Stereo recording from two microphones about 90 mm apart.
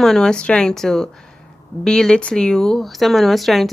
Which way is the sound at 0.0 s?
5° left (ahead or behind).